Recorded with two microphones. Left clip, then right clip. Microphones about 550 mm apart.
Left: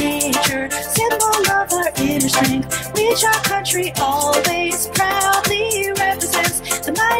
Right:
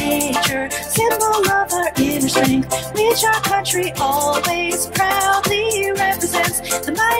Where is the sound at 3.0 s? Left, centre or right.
Left.